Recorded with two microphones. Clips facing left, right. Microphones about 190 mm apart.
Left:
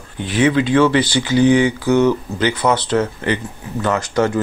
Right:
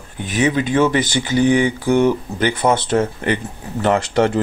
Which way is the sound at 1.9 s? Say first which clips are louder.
Even; 50° right (ahead or behind).